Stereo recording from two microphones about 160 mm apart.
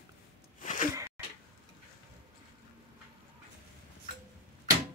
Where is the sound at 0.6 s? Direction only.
50° left (ahead or behind).